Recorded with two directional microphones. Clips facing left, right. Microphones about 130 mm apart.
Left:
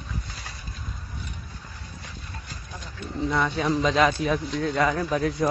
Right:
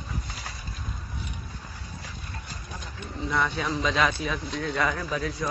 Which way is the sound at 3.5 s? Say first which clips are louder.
Left 4 dB; 40° left (ahead or behind).